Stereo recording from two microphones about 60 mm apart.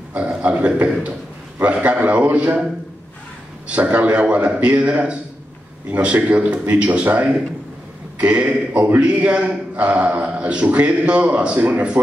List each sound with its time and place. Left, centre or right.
0.1 s a man's voice: centre
8.2 s a man's voice: right